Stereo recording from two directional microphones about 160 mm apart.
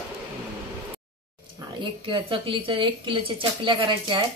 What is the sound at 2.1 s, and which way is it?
A woman's voice, 30° right (ahead or behind).